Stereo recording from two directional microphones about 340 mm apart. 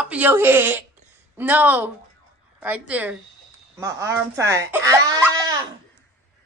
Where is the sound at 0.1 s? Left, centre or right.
Centre.